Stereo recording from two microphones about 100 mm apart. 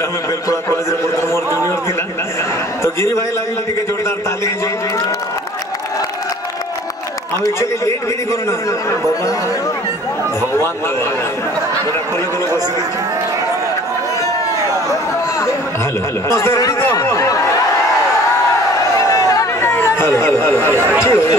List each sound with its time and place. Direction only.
0.5 s a man's voice: 30° left (ahead or behind)
2.8 s a man's voice: 30° left (ahead or behind)
7.4 s a man's voice: 30° left (ahead or behind)
16.3 s speech: 30° left (ahead or behind)
18.9 s a sound: 35° left (ahead or behind)
19.7 s speech: 20° left (ahead or behind)
20.7 s speech: 25° right (ahead or behind)
21.0 s a man's voice: 30° left (ahead or behind)